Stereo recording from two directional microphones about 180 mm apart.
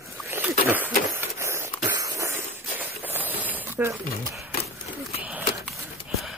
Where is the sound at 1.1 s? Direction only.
15° right (ahead or behind).